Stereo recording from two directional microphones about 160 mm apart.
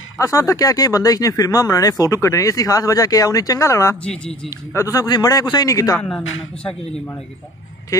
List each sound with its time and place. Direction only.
0.2 s speech: 20° left (ahead or behind)
3.9 s speech: 5° left (ahead or behind)
4.7 s speech: 20° left (ahead or behind)
5.9 s speech: 5° left (ahead or behind)